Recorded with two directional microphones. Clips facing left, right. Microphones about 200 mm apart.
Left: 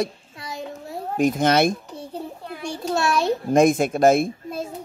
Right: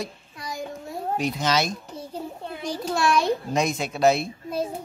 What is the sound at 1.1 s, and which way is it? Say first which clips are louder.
Speech: left 6 dB; 50° left (ahead or behind).